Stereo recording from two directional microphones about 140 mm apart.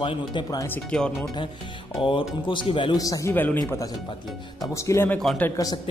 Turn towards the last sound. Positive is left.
turn(degrees=25)  # may be behind; listen again after turning